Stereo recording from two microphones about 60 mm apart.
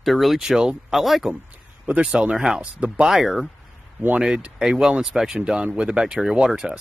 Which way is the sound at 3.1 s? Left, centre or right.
Centre.